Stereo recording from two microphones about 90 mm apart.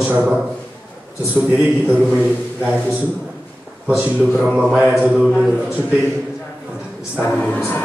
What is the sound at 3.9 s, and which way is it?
A man's voice, 15° right (ahead or behind).